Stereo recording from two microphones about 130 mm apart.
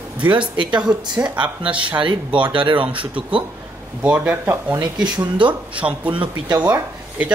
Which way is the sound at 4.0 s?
15° right (ahead or behind).